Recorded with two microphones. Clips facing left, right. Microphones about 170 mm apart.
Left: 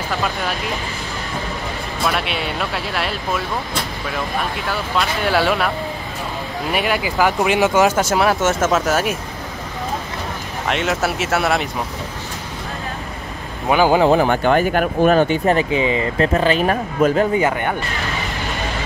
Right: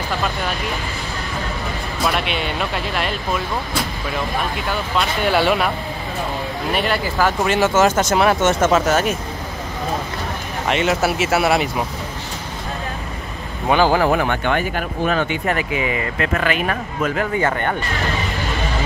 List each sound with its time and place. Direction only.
2.0 s speech: centre (ahead or behind)
4.6 s speech: centre (ahead or behind)
6.7 s speech: 10° left (ahead or behind)
10.7 s speech: centre (ahead or behind)
13.7 s speech: 15° left (ahead or behind)
14.2 s speech: 35° left (ahead or behind)
14.7 s speech: 50° left (ahead or behind); by 17.3 s 30° left (ahead or behind)
17.4 s speech: 10° left (ahead or behind)